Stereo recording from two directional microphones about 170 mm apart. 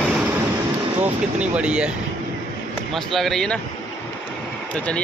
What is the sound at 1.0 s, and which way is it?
Speech, 5° right (ahead or behind).